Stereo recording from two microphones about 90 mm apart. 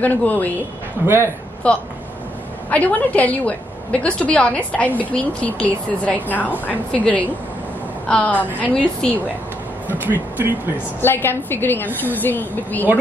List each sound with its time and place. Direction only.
0.0 s a woman's voice: 20° left (ahead or behind)
1.0 s a man's voice: 25° right (ahead or behind)
1.6 s a woman's voice: 10° left (ahead or behind)
9.8 s speech: 20° right (ahead or behind)
11.0 s a woman's voice: 25° left (ahead or behind)